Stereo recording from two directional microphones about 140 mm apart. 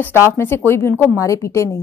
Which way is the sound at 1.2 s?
20° left (ahead or behind).